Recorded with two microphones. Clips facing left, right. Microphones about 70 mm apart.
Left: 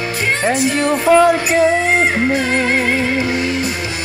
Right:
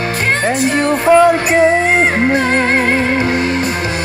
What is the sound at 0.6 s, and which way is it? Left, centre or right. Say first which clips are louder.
Speech: right 2 dB; right.